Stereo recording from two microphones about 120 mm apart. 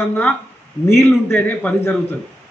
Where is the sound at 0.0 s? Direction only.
15° left (ahead or behind).